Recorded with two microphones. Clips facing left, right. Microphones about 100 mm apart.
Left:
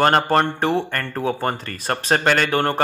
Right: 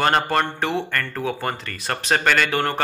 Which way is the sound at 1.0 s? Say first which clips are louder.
Left 2 dB; 20° left (ahead or behind).